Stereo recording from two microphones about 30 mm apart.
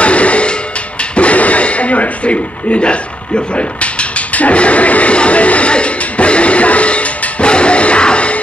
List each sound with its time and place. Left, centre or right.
0.0 s music: left
1.1 s a sound: left
5.7 s music: left